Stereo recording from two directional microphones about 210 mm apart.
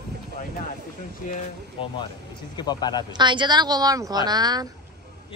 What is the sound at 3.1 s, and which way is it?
A woman's voice, 20° right (ahead or behind).